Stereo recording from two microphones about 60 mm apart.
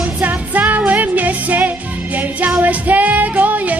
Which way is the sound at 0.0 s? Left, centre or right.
Right.